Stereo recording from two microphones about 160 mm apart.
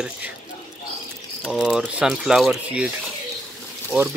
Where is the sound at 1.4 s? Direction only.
Centre (ahead or behind).